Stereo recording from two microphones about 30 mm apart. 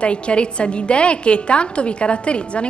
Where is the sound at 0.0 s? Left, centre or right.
Left.